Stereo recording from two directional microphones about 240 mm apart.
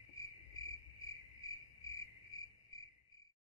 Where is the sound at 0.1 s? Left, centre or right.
Centre.